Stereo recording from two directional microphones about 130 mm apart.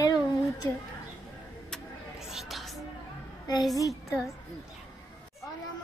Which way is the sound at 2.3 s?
Centre (ahead or behind).